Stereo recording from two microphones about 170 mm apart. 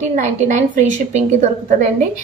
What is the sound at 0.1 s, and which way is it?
A woman's voice, 45° right (ahead or behind).